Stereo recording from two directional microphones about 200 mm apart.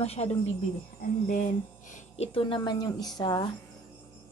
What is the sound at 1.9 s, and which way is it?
A woman's voice, 30° left (ahead or behind).